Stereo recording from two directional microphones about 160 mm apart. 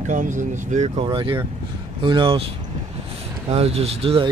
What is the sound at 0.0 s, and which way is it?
Speech, 50° right (ahead or behind).